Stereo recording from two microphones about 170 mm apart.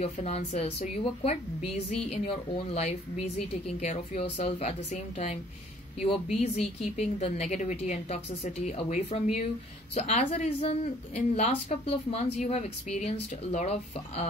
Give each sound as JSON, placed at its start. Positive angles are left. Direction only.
{"t": 0.0, "sound": "a woman's voice", "side_deg": 35}